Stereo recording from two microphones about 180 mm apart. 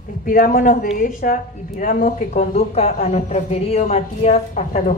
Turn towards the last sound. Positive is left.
turn(degrees=40)  # may be behind; listen again after turning